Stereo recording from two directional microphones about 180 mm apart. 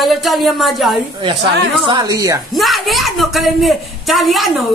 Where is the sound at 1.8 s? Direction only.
25° right (ahead or behind).